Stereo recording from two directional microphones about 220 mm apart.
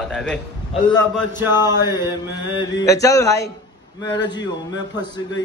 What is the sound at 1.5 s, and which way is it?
Mantra, 20° left (ahead or behind).